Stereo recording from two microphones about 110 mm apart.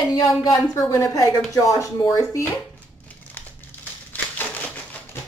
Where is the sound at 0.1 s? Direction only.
35° left (ahead or behind).